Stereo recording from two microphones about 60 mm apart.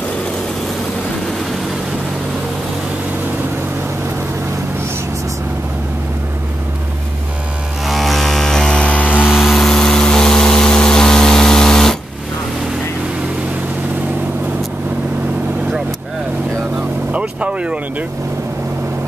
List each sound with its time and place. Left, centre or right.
7.8 s a sound: centre; by 9.3 s left
9.3 s vehicle: centre
17.1 s vehicle: centre